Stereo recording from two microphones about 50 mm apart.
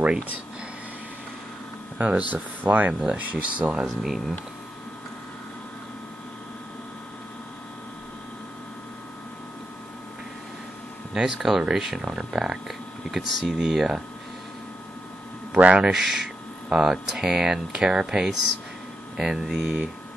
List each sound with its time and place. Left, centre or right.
2.0 s speech: right
4.0 s speech: centre
11.1 s speech: centre
15.5 s speech: right
15.9 s speech: centre